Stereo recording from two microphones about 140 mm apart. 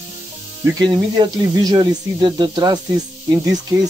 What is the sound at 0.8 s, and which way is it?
Speech, 30° right (ahead or behind).